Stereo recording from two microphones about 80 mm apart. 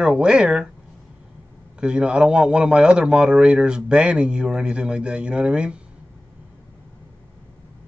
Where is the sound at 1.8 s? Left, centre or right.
Centre.